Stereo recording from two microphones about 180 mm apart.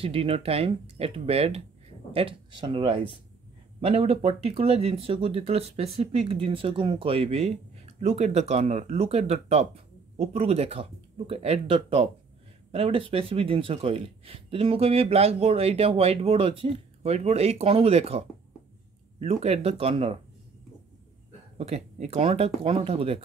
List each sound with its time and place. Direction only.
0.0 s speech: 30° right (ahead or behind)
21.5 s speech: 35° right (ahead or behind)